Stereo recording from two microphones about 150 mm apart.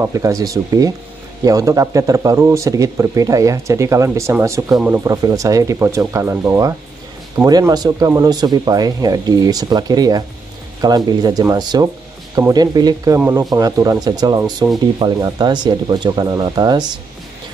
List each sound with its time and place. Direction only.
0.0 s speech: 20° right (ahead or behind)
5.0 s speech: 20° right (ahead or behind)